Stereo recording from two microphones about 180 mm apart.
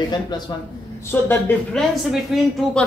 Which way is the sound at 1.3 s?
5° left (ahead or behind).